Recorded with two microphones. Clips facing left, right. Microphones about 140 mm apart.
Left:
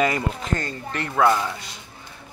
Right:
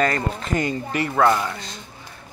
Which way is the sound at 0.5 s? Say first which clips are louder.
Right 4 dB; 15° right (ahead or behind).